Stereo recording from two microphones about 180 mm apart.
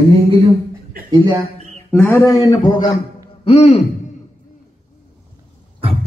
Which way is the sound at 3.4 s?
35° left (ahead or behind).